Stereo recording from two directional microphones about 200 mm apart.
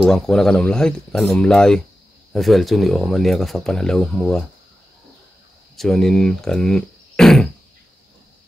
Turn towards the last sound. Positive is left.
turn(degrees=0)  # may be behind; listen again after turning